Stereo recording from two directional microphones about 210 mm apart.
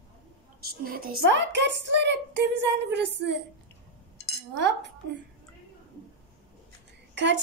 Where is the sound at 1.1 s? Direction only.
55° right (ahead or behind).